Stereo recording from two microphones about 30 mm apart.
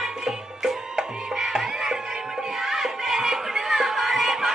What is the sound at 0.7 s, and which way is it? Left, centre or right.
Music, centre.